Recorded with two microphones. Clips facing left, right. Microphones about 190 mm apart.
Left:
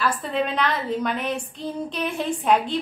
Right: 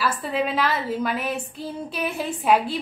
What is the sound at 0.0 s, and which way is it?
A woman's voice, 5° right (ahead or behind).